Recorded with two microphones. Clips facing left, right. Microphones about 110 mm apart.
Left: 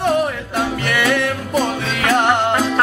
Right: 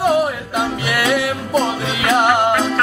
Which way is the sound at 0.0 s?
5° right (ahead or behind).